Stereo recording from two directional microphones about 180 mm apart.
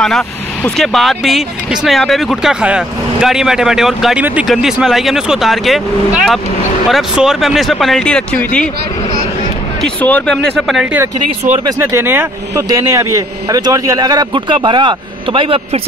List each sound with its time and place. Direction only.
0.7 s speech: centre (ahead or behind)
9.8 s speech: 10° left (ahead or behind)
10.7 s a man's voice: 5° right (ahead or behind); by 15.8 s 30° right (ahead or behind)